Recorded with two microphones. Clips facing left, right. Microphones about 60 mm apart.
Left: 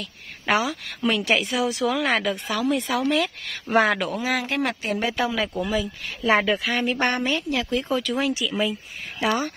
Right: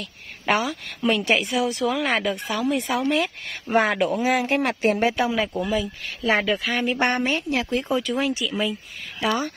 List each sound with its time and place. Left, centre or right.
0.0 s a woman's voice: centre
4.6 s speech: right
5.1 s a woman's voice: centre
7.0 s a woman's voice: right
7.9 s a woman's voice: centre